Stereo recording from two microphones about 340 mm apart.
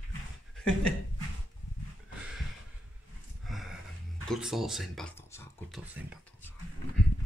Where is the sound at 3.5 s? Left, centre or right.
Centre.